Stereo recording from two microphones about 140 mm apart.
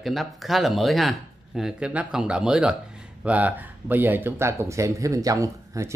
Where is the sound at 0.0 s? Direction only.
Centre (ahead or behind).